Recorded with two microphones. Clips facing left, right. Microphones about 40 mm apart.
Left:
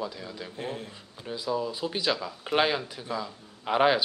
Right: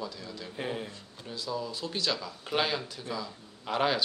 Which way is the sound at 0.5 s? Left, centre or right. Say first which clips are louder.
Right 2 dB; centre.